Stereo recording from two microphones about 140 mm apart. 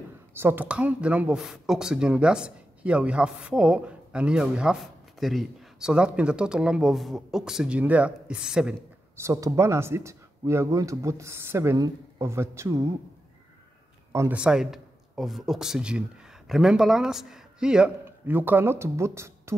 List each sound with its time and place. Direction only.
0.3 s speech: 15° right (ahead or behind)
9.1 s speech: 20° right (ahead or behind)
14.3 s speech: 5° right (ahead or behind)